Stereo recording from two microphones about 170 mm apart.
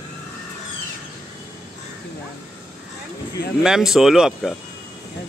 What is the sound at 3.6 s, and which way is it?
Speech, 5° right (ahead or behind).